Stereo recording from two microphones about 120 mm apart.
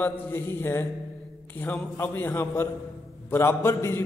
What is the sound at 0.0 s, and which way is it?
A man's voice, 20° left (ahead or behind).